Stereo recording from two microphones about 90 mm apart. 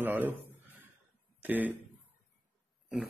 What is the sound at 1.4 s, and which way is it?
Speech, 20° right (ahead or behind).